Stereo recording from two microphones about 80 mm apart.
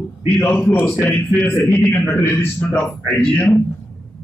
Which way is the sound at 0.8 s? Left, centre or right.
Centre.